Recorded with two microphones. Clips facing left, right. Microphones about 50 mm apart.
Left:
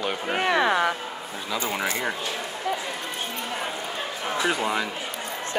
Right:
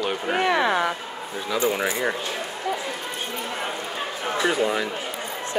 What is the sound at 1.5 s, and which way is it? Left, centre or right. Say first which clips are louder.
Speech: right 5 dB; centre.